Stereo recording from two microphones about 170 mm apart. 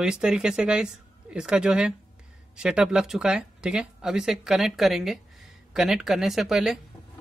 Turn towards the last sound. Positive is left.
turn(degrees=0)  # may be behind; listen again after turning